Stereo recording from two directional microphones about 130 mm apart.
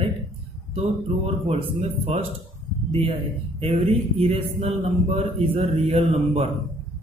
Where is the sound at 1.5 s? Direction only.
45° right (ahead or behind).